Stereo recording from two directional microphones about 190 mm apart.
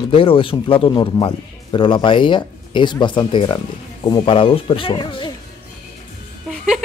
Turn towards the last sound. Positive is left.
turn(degrees=0)  # may be behind; listen again after turning